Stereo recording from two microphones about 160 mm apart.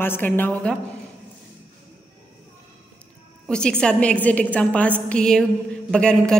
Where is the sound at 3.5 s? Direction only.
5° left (ahead or behind).